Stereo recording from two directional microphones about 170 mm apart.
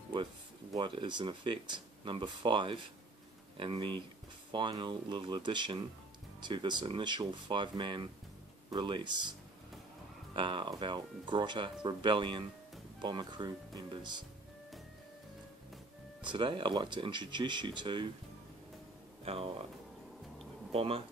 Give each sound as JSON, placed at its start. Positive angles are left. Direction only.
{"t": 0.7, "sound": "speech", "side_deg": -30}
{"t": 10.3, "sound": "speech", "side_deg": -30}
{"t": 16.2, "sound": "speech", "side_deg": -30}
{"t": 19.2, "sound": "speech", "side_deg": -35}
{"t": 20.7, "sound": "speech", "side_deg": -35}